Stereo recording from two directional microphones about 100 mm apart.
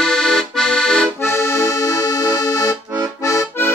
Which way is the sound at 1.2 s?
25° left (ahead or behind).